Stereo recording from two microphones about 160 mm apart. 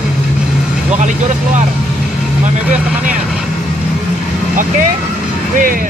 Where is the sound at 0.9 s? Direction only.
50° right (ahead or behind).